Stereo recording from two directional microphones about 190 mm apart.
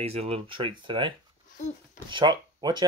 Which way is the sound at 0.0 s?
30° right (ahead or behind).